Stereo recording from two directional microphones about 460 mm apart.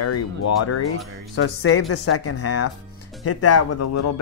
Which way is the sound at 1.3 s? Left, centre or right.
Left.